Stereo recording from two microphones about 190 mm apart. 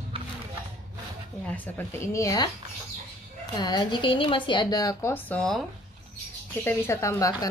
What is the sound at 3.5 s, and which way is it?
Speech, 20° left (ahead or behind).